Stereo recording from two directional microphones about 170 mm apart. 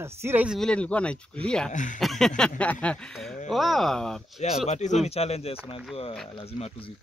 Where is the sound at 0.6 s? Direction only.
5° left (ahead or behind).